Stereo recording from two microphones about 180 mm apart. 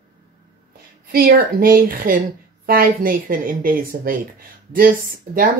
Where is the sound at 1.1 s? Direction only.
55° right (ahead or behind).